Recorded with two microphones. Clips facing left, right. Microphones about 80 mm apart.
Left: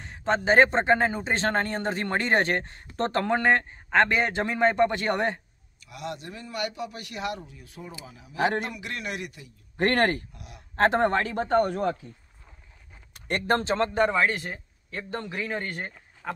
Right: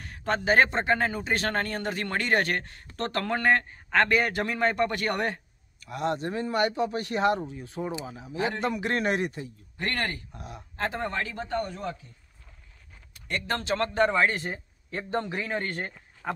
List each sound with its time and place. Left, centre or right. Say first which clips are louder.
0.0 s a man's voice: left 2 dB; left
5.8 s a man's voice: right 7 dB; right
9.8 s speech: left 8 dB; left
10.3 s a man's voice: right 6 dB; right
10.8 s speech: left 8 dB; left
13.5 s speech: left 5 dB; left
13.7 s a man's voice: left 1 dB; centre
14.1 s speech: even; centre
14.5 s speech: right 2 dB; centre